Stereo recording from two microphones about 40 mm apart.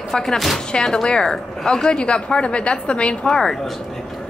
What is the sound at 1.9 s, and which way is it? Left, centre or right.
A woman's voice, left.